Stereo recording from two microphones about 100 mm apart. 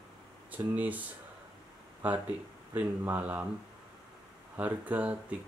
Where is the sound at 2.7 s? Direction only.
15° right (ahead or behind).